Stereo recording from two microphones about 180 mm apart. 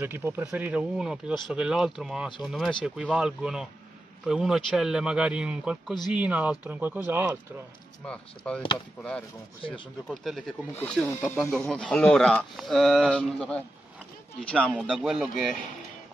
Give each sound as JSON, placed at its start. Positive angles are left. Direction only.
{"t": 0.0, "sound": "speech", "side_deg": -10}
{"t": 8.0, "sound": "speech", "side_deg": 5}
{"t": 9.7, "sound": "speech", "side_deg": 5}